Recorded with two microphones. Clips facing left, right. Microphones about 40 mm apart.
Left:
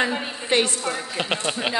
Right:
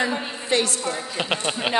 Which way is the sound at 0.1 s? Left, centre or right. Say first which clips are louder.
Even; centre.